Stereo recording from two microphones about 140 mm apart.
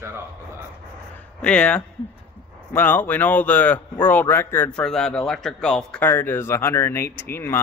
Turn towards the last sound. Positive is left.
turn(degrees=15)  # may be behind; listen again after turning